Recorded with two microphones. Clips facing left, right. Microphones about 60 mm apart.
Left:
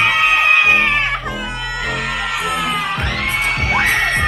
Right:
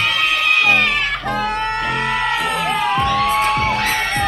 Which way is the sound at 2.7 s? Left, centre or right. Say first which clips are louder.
Right 3 dB; left.